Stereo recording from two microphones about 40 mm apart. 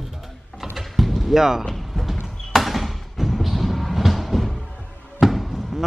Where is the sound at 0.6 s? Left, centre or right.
Centre.